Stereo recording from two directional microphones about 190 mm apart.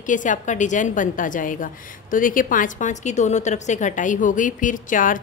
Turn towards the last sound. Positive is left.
turn(degrees=45)  # may be behind; listen again after turning